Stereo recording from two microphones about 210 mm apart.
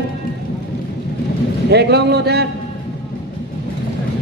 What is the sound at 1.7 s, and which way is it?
Speech, 50° right (ahead or behind).